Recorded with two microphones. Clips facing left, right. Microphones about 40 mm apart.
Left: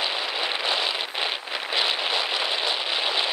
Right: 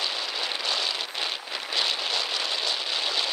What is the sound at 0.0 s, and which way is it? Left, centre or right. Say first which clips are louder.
Vehicle: left 3 dB; left.